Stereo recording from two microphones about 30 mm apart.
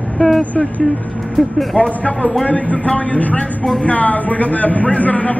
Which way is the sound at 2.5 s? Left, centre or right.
Left.